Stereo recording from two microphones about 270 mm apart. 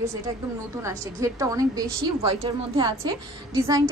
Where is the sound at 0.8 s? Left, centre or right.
Centre.